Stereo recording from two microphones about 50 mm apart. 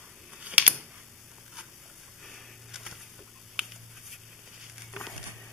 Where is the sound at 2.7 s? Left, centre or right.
Centre.